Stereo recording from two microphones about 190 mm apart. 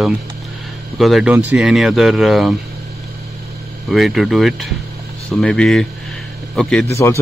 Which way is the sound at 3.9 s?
Centre (ahead or behind).